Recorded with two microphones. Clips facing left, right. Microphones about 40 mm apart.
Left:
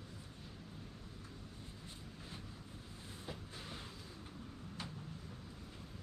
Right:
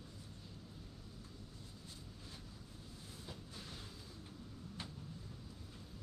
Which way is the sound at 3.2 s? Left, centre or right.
Left.